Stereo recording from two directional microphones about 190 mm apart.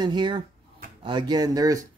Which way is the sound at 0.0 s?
25° right (ahead or behind).